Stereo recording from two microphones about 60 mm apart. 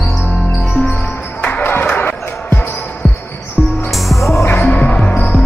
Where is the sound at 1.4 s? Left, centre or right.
Left.